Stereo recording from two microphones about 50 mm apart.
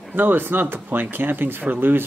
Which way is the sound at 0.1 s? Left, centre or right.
Right.